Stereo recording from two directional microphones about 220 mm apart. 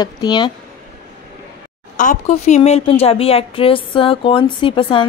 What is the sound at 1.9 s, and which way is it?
A woman's voice, 35° left (ahead or behind).